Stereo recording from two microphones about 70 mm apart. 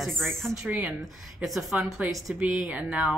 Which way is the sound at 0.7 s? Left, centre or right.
Right.